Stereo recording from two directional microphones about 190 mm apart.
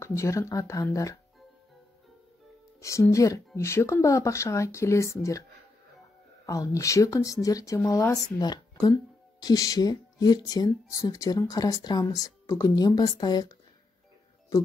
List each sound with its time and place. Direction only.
0.0 s speech: 15° left (ahead or behind)
2.8 s speech: 15° left (ahead or behind)
6.4 s speech: 15° left (ahead or behind)